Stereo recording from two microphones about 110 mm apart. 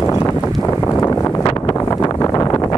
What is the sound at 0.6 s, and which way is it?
Wind noise, 25° left (ahead or behind).